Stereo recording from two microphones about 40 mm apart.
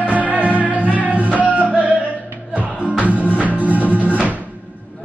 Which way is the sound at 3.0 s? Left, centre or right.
Right.